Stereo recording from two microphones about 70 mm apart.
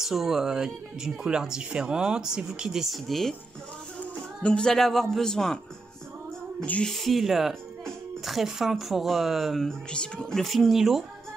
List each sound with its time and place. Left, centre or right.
0.0 s speech: centre
4.0 s speech: centre
6.6 s speech: left
6.9 s speech: centre
10.4 s speech: centre